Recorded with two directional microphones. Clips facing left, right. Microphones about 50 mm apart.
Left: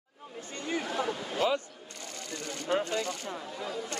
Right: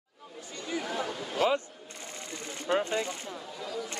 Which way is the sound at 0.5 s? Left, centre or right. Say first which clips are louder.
Left 1 dB; left.